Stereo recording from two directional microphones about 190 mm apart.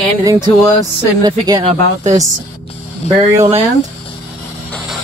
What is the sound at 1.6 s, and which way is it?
Speech, 35° right (ahead or behind).